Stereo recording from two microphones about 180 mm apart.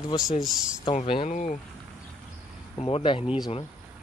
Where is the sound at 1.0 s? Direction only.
30° left (ahead or behind).